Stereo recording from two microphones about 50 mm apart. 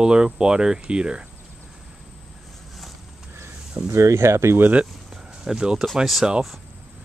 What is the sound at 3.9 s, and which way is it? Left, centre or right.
Speech, right.